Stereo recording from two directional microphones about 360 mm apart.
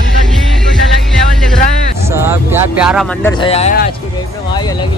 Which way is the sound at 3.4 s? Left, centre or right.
Centre.